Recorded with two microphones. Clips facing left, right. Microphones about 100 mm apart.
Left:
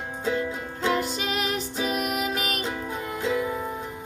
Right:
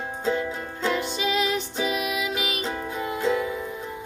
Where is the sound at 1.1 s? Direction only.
50° left (ahead or behind).